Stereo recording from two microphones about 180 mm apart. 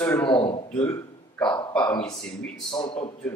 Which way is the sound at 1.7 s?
5° left (ahead or behind).